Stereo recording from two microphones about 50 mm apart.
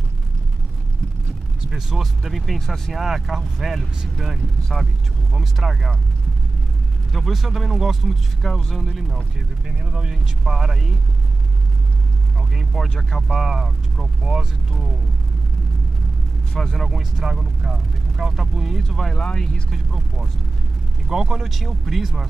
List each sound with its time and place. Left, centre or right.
1.7 s speech: centre
7.1 s speech: centre
8.6 s speech: centre
9.7 s speech: centre
12.4 s speech: centre
16.5 s speech: centre
16.8 s speech: centre
19.2 s speech: centre
19.7 s speech: centre